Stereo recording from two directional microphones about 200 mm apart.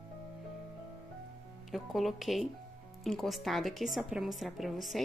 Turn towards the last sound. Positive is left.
turn(degrees=0)  # may be behind; listen again after turning